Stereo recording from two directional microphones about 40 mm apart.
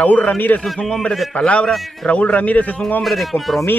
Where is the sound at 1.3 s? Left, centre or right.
Left.